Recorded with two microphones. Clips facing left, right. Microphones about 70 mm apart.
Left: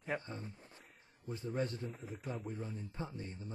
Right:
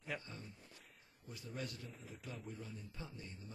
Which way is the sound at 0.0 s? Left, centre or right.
Left.